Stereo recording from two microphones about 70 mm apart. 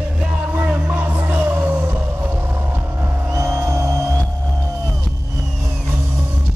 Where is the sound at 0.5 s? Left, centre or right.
Right.